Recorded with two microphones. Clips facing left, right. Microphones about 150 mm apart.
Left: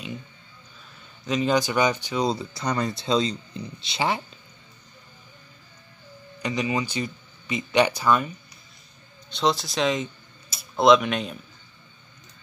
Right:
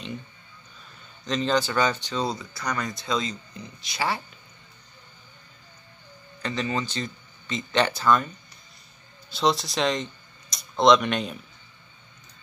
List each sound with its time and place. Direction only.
1.2 s speech: 10° left (ahead or behind)
2.3 s speech: 30° left (ahead or behind)
6.4 s speech: 10° left (ahead or behind)
9.3 s speech: centre (ahead or behind)